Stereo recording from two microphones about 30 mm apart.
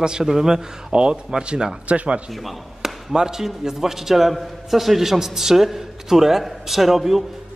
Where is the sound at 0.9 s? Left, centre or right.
Right.